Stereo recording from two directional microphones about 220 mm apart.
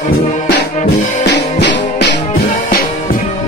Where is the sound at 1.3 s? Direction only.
50° left (ahead or behind).